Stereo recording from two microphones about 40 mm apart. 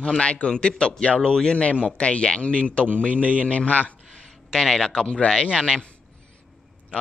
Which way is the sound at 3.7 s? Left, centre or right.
Left.